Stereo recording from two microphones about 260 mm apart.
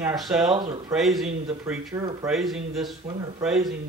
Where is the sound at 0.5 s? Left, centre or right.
Centre.